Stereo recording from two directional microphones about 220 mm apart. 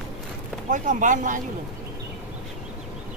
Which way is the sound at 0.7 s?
35° right (ahead or behind).